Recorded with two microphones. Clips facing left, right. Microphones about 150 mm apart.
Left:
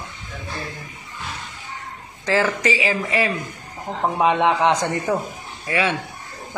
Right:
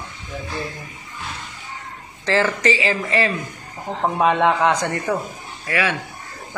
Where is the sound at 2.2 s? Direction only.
10° left (ahead or behind).